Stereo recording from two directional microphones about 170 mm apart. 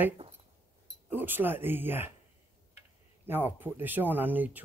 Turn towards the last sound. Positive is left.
turn(degrees=-10)  # may be behind; listen again after turning